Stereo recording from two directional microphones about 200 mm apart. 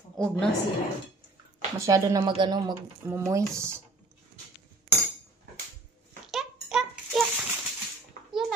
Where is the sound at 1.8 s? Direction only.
15° right (ahead or behind).